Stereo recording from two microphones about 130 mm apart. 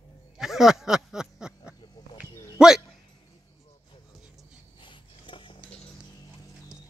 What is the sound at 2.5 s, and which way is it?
Dog, 5° right (ahead or behind).